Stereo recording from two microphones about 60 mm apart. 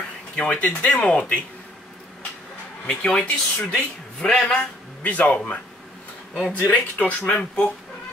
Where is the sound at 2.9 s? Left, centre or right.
Centre.